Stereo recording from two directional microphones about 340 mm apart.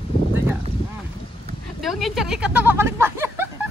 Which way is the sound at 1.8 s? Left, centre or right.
Centre.